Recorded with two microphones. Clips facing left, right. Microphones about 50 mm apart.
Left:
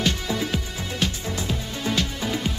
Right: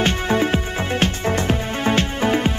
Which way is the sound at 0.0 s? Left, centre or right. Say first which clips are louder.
Right 7 dB; right.